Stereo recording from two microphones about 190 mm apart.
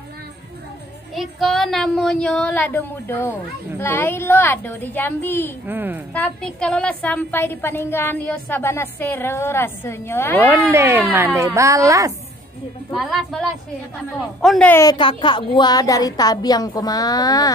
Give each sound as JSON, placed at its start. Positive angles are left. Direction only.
{"t": 1.1, "sound": "a woman's voice", "side_deg": 0}
{"t": 5.7, "sound": "speech", "side_deg": -10}
{"t": 6.1, "sound": "a woman's voice", "side_deg": 5}
{"t": 10.4, "sound": "speech", "side_deg": -15}
{"t": 12.9, "sound": "a woman's voice", "side_deg": 0}
{"t": 15.0, "sound": "a woman's voice", "side_deg": 25}